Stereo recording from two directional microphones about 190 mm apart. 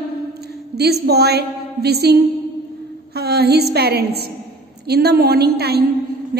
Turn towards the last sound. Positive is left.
turn(degrees=-60)  # may be behind; listen again after turning